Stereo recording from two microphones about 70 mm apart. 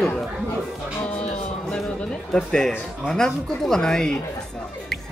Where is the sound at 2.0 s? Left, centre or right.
Centre.